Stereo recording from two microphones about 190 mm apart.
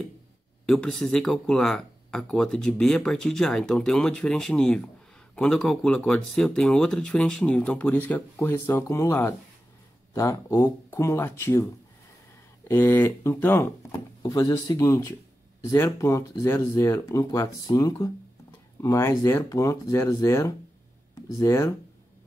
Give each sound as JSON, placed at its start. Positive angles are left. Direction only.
{"t": 0.7, "sound": "speech", "side_deg": 5}
{"t": 12.6, "sound": "speech", "side_deg": 10}